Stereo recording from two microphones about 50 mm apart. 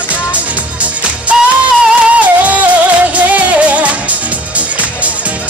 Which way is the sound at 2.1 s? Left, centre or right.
Right.